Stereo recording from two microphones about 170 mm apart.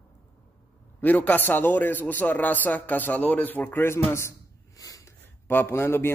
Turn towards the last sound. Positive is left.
turn(degrees=15)  # may be behind; listen again after turning